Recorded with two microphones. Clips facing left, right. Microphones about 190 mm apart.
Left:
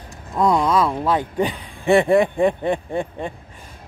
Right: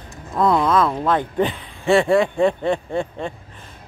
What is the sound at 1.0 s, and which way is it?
Speech, 10° left (ahead or behind).